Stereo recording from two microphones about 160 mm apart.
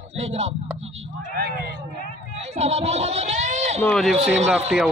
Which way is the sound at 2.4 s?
40° right (ahead or behind).